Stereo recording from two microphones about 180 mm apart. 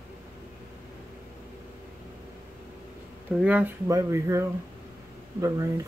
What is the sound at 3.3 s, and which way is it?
Speech, 5° right (ahead or behind).